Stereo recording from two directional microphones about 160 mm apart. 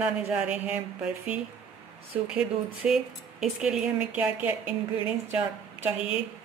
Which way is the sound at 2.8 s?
5° right (ahead or behind).